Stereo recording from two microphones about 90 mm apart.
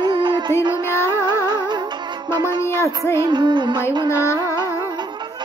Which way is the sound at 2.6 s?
30° left (ahead or behind).